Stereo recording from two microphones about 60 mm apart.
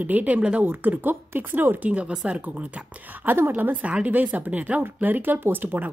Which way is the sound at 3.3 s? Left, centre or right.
Right.